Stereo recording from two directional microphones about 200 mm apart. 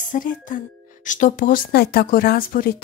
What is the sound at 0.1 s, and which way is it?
Speech, 40° left (ahead or behind).